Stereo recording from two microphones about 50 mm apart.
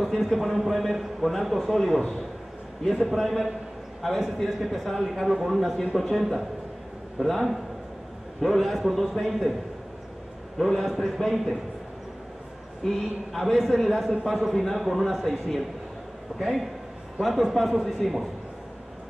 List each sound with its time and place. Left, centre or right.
0.0 s a man's voice: centre
3.1 s a man's voice: centre
10.8 s a man's voice: centre
12.8 s a man's voice: centre